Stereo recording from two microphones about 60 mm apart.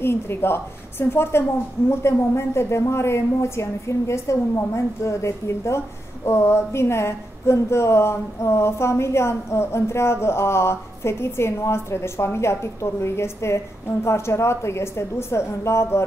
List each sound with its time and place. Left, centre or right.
0.0 s a woman's voice: left